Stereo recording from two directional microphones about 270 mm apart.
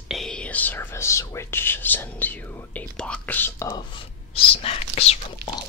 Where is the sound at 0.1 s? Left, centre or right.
Centre.